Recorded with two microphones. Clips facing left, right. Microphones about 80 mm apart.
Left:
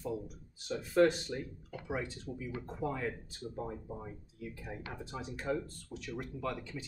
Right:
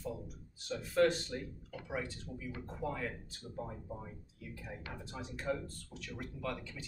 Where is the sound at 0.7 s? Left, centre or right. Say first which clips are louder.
Left 3 dB; centre.